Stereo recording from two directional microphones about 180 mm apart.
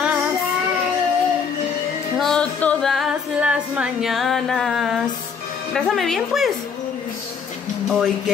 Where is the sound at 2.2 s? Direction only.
5° left (ahead or behind).